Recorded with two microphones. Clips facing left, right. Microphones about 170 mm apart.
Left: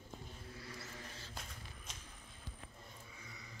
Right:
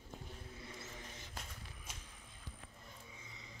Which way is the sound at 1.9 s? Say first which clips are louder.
Right 2 dB; 5° right (ahead or behind).